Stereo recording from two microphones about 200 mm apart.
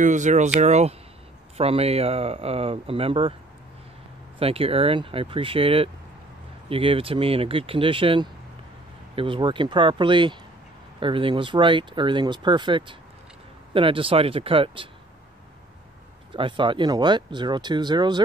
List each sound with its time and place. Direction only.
0.0 s speech: 40° right (ahead or behind)
4.4 s speech: 30° right (ahead or behind)
16.3 s speech: 25° right (ahead or behind)